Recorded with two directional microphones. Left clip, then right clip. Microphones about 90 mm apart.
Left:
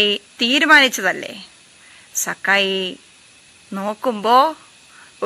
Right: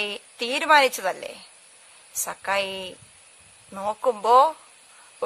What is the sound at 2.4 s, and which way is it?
Speech, 30° right (ahead or behind).